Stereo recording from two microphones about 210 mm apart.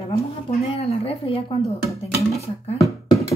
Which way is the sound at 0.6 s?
30° left (ahead or behind).